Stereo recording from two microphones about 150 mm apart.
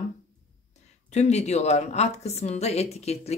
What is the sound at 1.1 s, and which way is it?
A woman's voice, 50° left (ahead or behind).